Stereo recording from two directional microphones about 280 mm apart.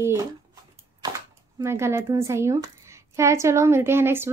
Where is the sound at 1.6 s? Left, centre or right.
Centre.